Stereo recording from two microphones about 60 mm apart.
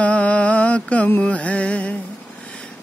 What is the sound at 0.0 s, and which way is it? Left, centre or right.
Music, left.